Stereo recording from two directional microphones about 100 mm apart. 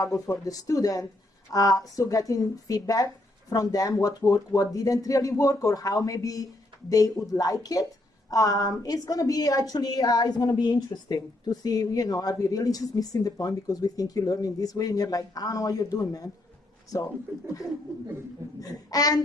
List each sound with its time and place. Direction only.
0.0 s a woman's voice: 35° left (ahead or behind)
18.6 s a woman's voice: 35° left (ahead or behind)